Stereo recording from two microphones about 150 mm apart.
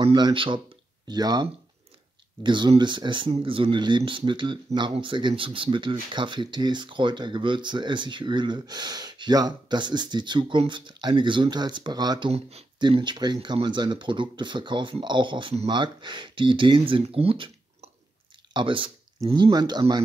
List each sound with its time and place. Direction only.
0.0 s speech: 30° right (ahead or behind)
12.3 s speech: 45° right (ahead or behind)
12.7 s speech: 30° right (ahead or behind)
18.5 s speech: 35° right (ahead or behind)